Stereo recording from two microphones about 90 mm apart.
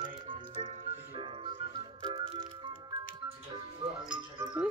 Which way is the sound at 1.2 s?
80° right.